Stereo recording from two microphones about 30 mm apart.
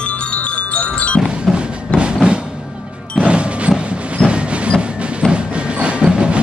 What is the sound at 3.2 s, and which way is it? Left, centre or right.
Music, right.